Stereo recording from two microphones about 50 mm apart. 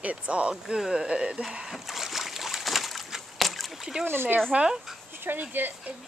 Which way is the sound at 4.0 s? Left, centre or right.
Right.